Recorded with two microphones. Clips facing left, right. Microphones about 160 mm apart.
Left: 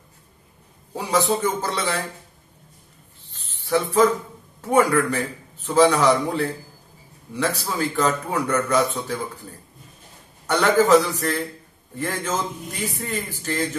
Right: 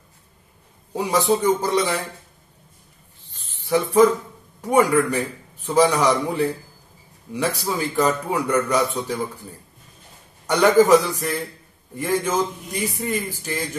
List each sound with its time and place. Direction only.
0.9 s a man's voice: 15° right (ahead or behind)
3.3 s a sound: 15° right (ahead or behind)
4.6 s a man's voice: 15° right (ahead or behind)